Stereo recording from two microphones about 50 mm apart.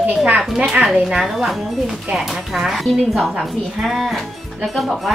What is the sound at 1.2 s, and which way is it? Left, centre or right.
A child's voice, centre.